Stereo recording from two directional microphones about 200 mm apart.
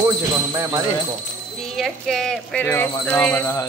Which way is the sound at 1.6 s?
Centre (ahead or behind).